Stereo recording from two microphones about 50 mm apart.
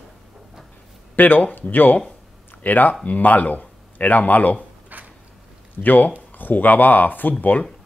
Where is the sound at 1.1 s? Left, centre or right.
Left.